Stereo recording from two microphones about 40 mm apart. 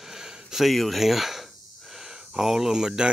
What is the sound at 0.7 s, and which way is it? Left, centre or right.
Speech, centre.